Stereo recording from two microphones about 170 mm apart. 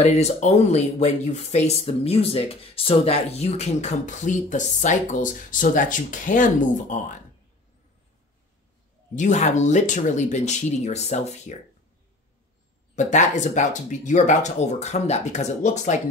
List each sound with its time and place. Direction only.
0.0 s speech: 40° left (ahead or behind)
9.1 s speech: 45° left (ahead or behind)
12.9 s speech: 45° left (ahead or behind)